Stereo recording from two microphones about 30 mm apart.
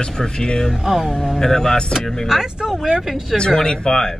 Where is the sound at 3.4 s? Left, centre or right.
Left.